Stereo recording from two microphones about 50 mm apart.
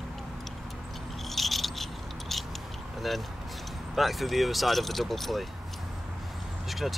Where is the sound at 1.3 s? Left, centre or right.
Centre.